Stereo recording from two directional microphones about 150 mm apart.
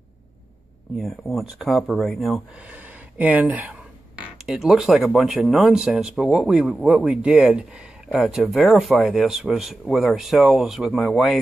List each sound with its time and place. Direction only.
0.9 s speech: centre (ahead or behind)